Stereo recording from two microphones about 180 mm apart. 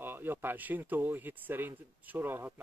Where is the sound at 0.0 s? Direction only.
10° right (ahead or behind).